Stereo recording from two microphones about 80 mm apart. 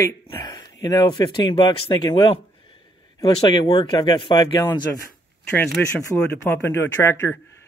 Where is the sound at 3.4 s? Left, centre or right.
Left.